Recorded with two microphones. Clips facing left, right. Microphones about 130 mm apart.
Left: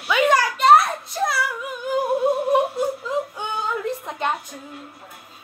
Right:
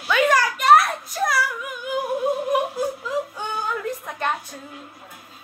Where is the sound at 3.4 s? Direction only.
20° left (ahead or behind).